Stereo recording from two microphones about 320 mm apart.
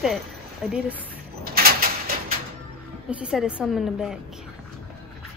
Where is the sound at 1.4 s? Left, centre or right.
Right.